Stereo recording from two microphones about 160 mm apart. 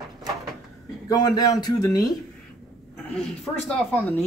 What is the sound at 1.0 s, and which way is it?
Speech, 25° left (ahead or behind).